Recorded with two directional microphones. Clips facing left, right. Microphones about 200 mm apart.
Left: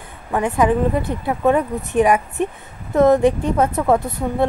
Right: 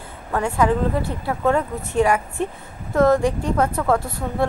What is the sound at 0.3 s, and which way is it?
A woman's voice, 15° left (ahead or behind).